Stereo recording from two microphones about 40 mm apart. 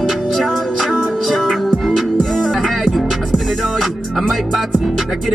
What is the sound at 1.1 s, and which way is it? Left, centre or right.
Music, centre.